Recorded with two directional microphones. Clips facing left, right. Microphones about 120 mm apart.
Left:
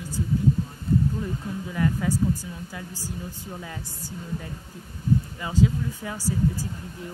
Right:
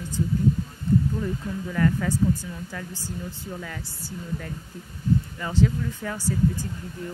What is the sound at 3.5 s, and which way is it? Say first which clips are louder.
Speech: even; 20° left (ahead or behind).